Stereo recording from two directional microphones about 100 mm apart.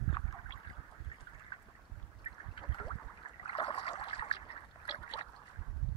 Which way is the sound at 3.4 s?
65° left (ahead or behind).